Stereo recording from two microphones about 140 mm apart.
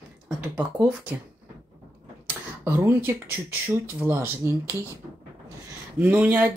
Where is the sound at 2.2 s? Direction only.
15° right (ahead or behind).